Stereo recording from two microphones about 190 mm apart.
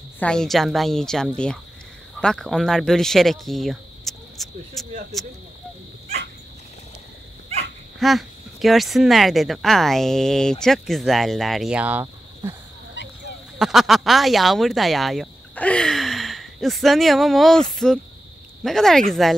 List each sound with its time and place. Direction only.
0.2 s speech: 5° left (ahead or behind)
8.0 s speech: centre (ahead or behind)
13.6 s speech: centre (ahead or behind)